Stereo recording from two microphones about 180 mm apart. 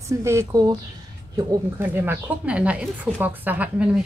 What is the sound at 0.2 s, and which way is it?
A woman's voice, 15° right (ahead or behind).